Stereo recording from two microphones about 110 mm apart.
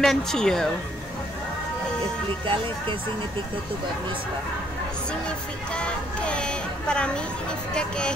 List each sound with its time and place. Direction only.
0.0 s a woman's voice: 5° left (ahead or behind)
2.4 s speech: 50° right (ahead or behind)
5.7 s speech: 10° left (ahead or behind)